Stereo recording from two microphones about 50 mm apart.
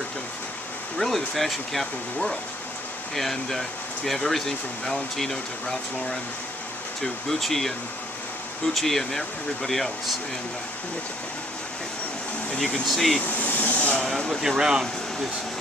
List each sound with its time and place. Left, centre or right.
0.9 s speech: centre
7.0 s speech: centre
12.8 s speech: centre
13.2 s a sound: left
13.9 s speech: centre
14.4 s speech: centre